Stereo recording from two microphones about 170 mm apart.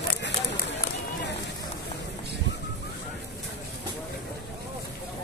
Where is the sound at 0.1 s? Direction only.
90° left.